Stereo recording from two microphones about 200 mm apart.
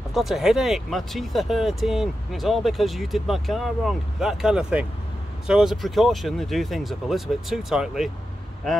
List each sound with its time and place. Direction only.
0.1 s speech: centre (ahead or behind)